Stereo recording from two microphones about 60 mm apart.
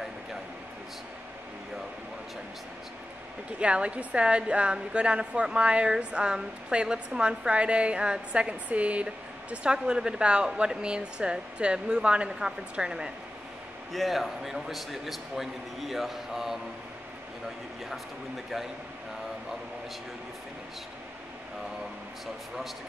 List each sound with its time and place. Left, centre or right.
3.5 s a woman's voice: centre
13.9 s a man's voice: centre